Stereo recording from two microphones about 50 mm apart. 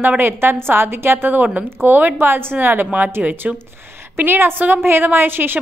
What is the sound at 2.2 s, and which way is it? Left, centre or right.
Speech, right.